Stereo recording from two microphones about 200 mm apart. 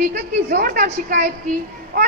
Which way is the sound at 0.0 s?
50° right (ahead or behind).